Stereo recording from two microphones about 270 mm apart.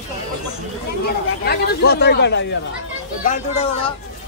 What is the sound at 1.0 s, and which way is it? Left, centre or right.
Speech, left.